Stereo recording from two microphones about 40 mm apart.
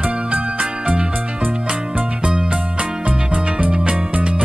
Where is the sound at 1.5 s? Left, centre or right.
Right.